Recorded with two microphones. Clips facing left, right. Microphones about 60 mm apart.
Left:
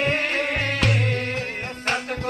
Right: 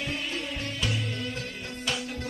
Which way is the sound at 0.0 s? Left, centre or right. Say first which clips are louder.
Left 10 dB; left.